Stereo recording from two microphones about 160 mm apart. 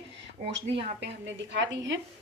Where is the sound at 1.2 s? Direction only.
90° right.